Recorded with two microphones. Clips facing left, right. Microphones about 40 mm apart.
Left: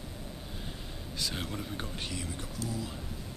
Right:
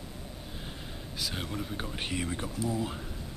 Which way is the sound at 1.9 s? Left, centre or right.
Right.